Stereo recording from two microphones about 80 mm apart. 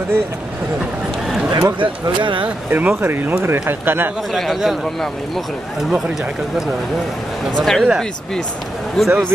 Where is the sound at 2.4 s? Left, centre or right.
Centre.